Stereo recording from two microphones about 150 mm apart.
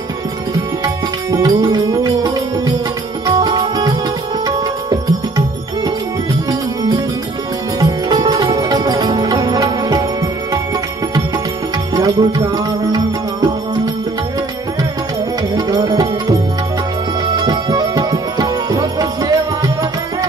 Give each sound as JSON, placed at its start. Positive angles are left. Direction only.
{"t": 1.3, "sound": "music", "side_deg": -30}
{"t": 7.8, "sound": "music", "side_deg": -25}
{"t": 11.9, "sound": "music", "side_deg": -25}
{"t": 15.5, "sound": "music", "side_deg": -30}
{"t": 17.4, "sound": "music", "side_deg": -25}